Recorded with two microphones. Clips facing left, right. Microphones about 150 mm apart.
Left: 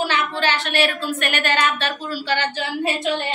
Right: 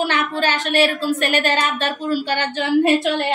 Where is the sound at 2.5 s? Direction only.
60° right (ahead or behind).